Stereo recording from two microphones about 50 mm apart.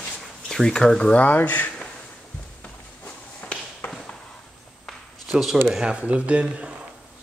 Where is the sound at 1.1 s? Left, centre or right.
Left.